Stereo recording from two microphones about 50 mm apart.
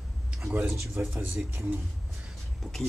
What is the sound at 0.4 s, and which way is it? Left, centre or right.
Speech, right.